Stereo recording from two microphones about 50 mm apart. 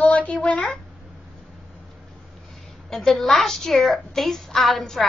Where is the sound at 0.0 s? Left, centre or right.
Left.